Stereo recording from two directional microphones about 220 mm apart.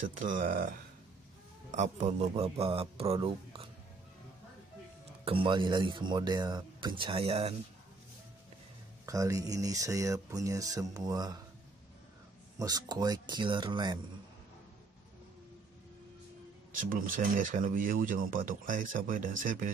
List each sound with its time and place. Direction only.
0.2 s speech: 35° right (ahead or behind)
1.7 s speech: 30° right (ahead or behind)
5.2 s speech: 25° right (ahead or behind)
9.0 s speech: 15° right (ahead or behind)
12.5 s speech: 15° right (ahead or behind)
16.9 s speech: 40° right (ahead or behind)